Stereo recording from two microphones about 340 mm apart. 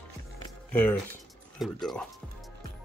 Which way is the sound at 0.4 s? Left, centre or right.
Centre.